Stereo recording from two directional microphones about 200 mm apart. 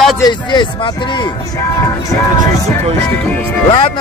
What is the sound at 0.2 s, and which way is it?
Speech, 20° left (ahead or behind).